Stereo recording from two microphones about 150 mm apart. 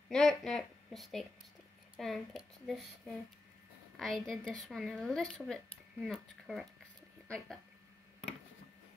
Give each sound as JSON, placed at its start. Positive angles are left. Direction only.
{"t": 0.1, "sound": "a sound", "side_deg": 5}
{"t": 2.0, "sound": "speech", "side_deg": 0}
{"t": 3.9, "sound": "speech", "side_deg": 0}